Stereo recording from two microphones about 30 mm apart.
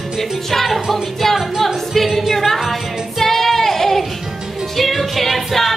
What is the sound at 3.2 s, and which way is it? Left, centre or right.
Child singing, centre.